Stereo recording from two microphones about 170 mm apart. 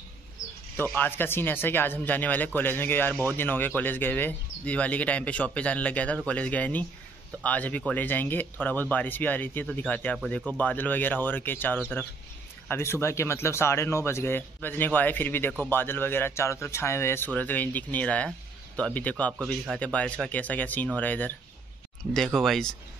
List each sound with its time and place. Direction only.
0.4 s bird: 20° left (ahead or behind)
0.7 s speech: 10° left (ahead or behind)